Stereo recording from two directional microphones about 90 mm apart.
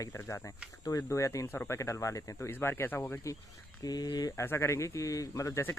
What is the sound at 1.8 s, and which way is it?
Speech, 35° left (ahead or behind).